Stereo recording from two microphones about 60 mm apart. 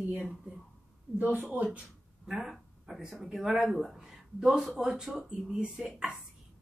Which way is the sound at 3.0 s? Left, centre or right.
Centre.